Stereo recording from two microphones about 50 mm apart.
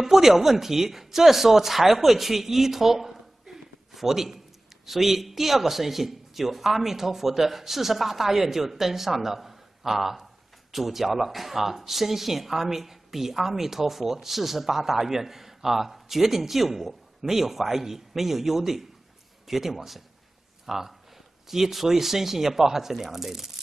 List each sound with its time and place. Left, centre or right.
0.0 s speech: centre